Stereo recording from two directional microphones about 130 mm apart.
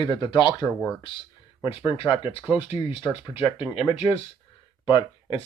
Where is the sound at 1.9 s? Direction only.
40° left (ahead or behind).